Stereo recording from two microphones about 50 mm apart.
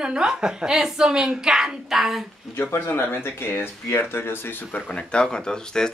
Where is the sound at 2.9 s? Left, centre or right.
Left.